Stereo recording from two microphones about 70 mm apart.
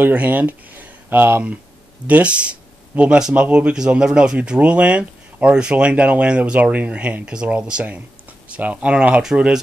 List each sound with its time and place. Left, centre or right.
0.0 s speech: right
2.0 s speech: centre